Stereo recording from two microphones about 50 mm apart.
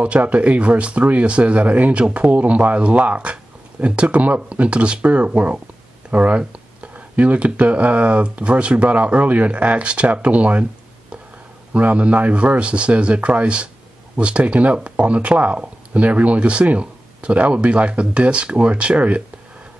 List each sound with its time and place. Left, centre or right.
0.0 s speech: right